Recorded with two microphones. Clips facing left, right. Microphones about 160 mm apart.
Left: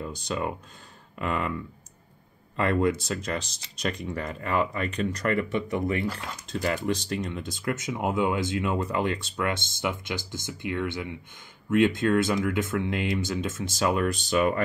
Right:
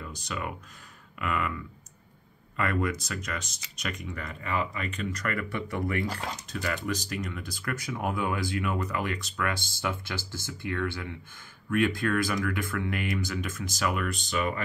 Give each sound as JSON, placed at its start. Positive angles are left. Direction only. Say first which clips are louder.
{"t": 0.0, "sound": "speech", "louder": "left 6 dB", "side_deg": 30}
{"t": 2.5, "sound": "speech", "louder": "left 5 dB", "side_deg": 30}
{"t": 14.3, "sound": "speech", "louder": "left 6 dB", "side_deg": 45}